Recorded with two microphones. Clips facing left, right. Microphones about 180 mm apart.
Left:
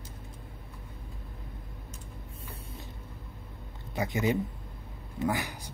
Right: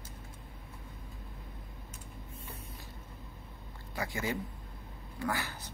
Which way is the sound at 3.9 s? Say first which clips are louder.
Left 7 dB; 20° left (ahead or behind).